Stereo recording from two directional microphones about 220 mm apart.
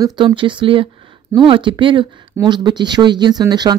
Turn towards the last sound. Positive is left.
turn(degrees=-20)  # may be behind; listen again after turning